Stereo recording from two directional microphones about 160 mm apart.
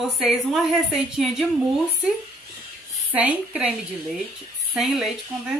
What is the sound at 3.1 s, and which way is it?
A woman's voice, 5° right (ahead or behind).